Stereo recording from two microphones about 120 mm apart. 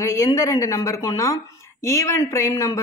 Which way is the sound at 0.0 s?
30° left (ahead or behind).